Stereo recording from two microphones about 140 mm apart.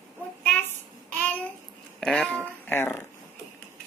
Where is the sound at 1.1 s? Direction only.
10° left (ahead or behind).